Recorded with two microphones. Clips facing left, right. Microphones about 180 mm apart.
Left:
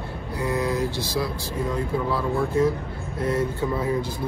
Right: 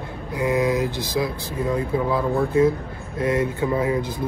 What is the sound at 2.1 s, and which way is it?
Speech, 20° right (ahead or behind).